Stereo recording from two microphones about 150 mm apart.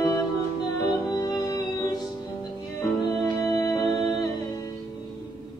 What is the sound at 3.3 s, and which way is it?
Music, 25° left (ahead or behind).